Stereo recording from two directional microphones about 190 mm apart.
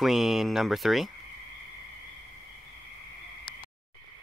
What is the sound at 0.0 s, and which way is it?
Speech, centre (ahead or behind).